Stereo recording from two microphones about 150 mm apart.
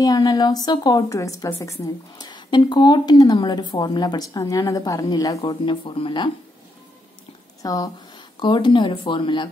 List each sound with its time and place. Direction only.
0.0 s a woman's voice: 25° left (ahead or behind)
5.4 s speech: 35° left (ahead or behind)
7.6 s a woman's voice: 25° left (ahead or behind)